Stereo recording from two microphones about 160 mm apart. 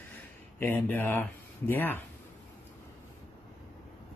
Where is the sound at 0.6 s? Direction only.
10° left (ahead or behind).